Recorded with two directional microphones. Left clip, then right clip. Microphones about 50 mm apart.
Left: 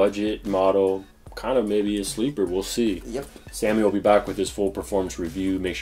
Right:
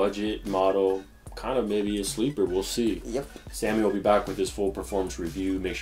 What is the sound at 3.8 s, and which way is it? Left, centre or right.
Speech, left.